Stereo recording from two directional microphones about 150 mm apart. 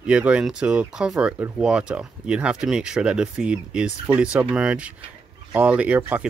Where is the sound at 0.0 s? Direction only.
5° right (ahead or behind).